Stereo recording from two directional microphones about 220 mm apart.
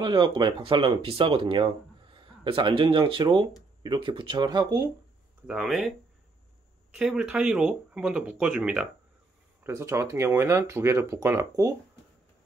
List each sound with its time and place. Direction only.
0.0 s speech: 20° right (ahead or behind)
5.5 s speech: centre (ahead or behind)
7.0 s speech: 5° right (ahead or behind)